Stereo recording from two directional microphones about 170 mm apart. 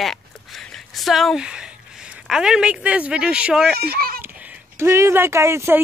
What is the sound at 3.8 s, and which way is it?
Speech, 65° right (ahead or behind).